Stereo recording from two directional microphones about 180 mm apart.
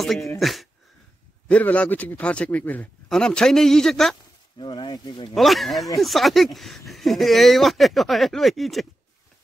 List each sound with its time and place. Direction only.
0.0 s speech: centre (ahead or behind)
4.6 s speech: 25° left (ahead or behind)
5.3 s speech: centre (ahead or behind)